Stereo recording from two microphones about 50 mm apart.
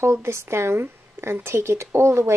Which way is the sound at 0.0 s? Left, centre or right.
Right.